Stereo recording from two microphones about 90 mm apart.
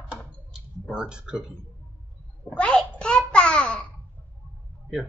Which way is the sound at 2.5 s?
10° left (ahead or behind).